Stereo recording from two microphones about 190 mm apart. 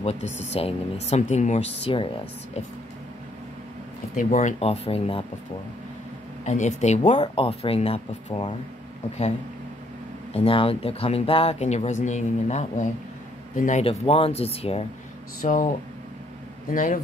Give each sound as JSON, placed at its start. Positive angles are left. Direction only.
{"t": 0.0, "sound": "speech", "side_deg": 35}
{"t": 4.2, "sound": "speech", "side_deg": 40}
{"t": 6.4, "sound": "speech", "side_deg": 40}
{"t": 10.3, "sound": "speech", "side_deg": 30}
{"t": 15.4, "sound": "speech", "side_deg": 45}
{"t": 16.7, "sound": "speech", "side_deg": 45}